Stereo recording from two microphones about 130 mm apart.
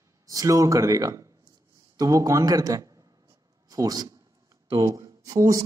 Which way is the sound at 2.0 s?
25° right (ahead or behind).